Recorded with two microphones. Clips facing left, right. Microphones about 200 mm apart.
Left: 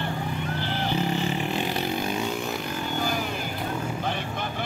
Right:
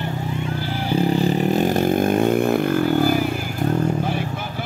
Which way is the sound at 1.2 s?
45° right (ahead or behind).